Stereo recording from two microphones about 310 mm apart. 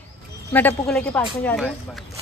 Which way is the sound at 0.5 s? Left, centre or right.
Centre.